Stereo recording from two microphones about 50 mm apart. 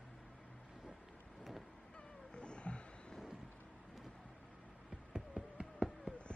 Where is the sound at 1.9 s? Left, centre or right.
Left.